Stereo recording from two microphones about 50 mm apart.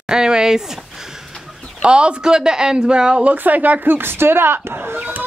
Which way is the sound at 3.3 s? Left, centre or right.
Right.